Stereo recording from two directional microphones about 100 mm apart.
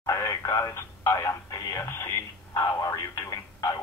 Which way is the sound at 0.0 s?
35° left (ahead or behind).